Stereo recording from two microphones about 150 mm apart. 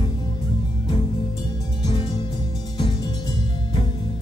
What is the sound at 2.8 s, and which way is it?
Music, 30° left (ahead or behind).